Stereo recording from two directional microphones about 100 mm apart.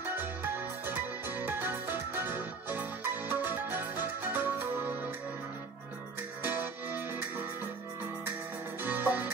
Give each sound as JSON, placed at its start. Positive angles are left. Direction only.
{"t": 0.0, "sound": "music", "side_deg": -20}
{"t": 6.4, "sound": "music", "side_deg": -20}
{"t": 8.8, "sound": "music", "side_deg": -20}